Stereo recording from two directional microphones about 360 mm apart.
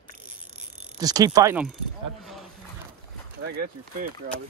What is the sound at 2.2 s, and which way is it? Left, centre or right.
Wild animals, centre.